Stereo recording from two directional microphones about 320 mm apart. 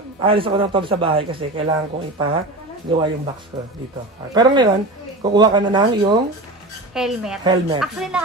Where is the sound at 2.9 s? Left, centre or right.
Centre.